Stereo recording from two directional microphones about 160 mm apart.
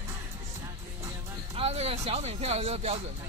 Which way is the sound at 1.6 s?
40° right (ahead or behind).